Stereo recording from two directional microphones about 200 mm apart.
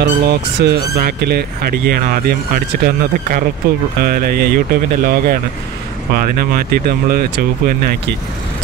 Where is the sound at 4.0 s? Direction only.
45° right (ahead or behind).